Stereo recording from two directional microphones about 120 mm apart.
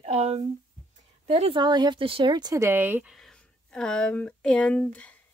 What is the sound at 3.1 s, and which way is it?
Speech, 5° left (ahead or behind).